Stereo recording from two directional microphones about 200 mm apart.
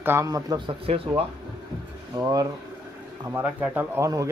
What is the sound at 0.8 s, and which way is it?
Speech, 30° right (ahead or behind).